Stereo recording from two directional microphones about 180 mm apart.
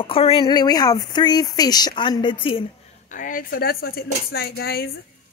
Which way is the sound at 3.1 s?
50° left (ahead or behind).